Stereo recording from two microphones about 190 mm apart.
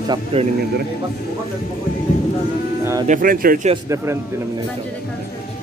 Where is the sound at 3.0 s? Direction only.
45° right (ahead or behind).